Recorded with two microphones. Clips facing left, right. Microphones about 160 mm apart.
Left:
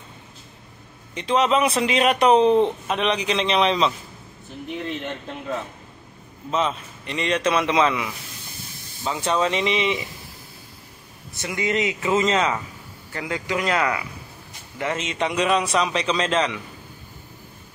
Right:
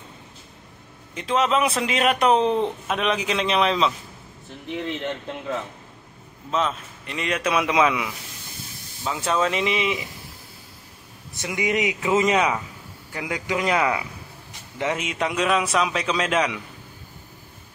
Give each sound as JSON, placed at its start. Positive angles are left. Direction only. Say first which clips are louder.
{"t": 1.1, "sound": "a man's voice", "louder": "left 2 dB", "side_deg": 0}
{"t": 6.5, "sound": "a man's voice", "louder": "left 1 dB", "side_deg": 0}
{"t": 11.3, "sound": "a man's voice", "louder": "even", "side_deg": -15}